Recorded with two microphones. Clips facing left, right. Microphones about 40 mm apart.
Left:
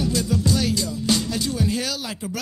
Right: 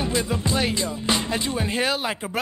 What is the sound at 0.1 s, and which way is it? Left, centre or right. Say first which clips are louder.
Music: left 1 dB; right.